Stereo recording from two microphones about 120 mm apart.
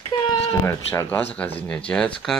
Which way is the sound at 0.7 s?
20° left (ahead or behind).